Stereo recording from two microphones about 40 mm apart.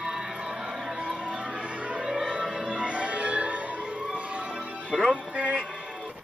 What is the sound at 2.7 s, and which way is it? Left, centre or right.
Music, right.